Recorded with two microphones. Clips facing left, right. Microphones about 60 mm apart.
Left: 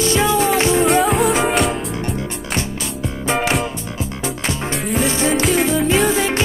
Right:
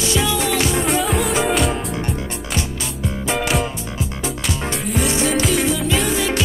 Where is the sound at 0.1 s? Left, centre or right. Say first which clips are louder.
Left 2 dB; left.